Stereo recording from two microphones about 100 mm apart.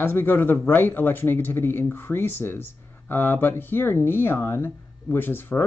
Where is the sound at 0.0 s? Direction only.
20° left (ahead or behind).